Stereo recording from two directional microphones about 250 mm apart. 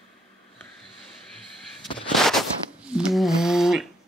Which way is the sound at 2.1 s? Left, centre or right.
Centre.